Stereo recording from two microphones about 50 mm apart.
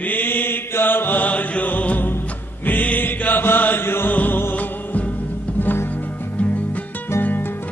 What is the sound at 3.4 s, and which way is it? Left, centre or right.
Chant, left.